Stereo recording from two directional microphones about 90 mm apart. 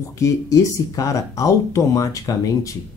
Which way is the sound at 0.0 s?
40° left (ahead or behind).